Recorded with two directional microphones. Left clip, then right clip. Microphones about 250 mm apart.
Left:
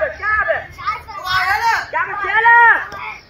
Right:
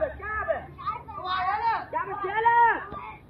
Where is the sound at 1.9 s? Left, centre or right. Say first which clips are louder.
Left 11 dB; centre.